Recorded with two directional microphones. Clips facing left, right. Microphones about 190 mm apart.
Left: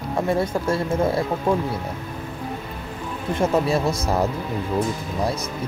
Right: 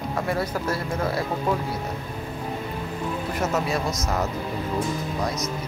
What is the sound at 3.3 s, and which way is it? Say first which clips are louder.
Speech: left 7 dB; 30° left (ahead or behind).